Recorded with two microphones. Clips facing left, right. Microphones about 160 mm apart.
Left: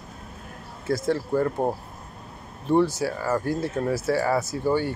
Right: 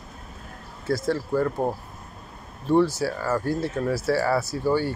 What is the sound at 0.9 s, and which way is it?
Speech, 20° left (ahead or behind).